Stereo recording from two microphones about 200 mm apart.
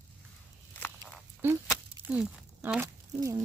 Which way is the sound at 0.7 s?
10° left (ahead or behind).